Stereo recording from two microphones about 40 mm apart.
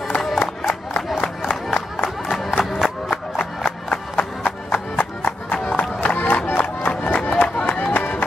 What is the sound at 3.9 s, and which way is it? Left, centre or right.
Music, left.